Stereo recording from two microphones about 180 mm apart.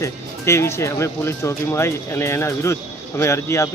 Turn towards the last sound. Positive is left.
turn(degrees=15)  # may be behind; listen again after turning